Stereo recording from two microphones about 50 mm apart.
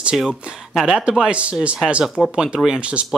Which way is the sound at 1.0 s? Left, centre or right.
Centre.